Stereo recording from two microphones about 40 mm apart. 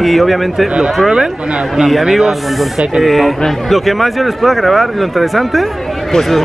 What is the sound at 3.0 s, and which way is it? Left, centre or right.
Speech, centre.